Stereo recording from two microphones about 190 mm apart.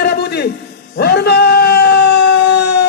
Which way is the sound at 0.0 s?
60° left (ahead or behind).